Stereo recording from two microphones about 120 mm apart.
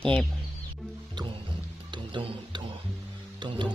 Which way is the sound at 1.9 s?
40° right (ahead or behind).